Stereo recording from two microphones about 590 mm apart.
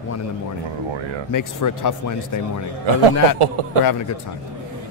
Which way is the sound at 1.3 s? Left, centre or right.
Left.